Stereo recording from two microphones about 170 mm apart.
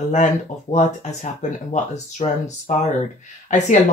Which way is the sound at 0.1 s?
45° left (ahead or behind).